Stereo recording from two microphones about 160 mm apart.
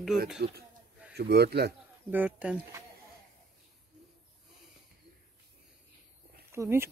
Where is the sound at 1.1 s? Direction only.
90° right.